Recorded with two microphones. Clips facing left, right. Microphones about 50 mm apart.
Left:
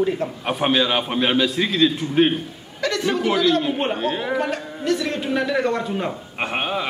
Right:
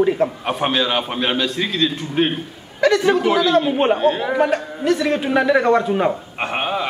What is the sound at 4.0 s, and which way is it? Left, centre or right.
Speech, centre.